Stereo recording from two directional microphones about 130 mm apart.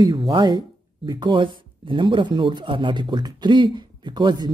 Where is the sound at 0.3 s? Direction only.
35° right (ahead or behind).